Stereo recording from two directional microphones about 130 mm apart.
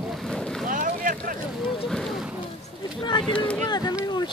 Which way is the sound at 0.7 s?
90° right.